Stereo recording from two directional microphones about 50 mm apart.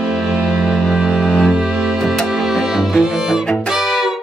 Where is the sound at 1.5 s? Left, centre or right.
Centre.